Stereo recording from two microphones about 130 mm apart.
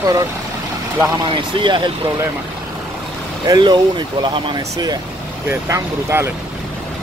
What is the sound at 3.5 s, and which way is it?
Speech, 35° right (ahead or behind).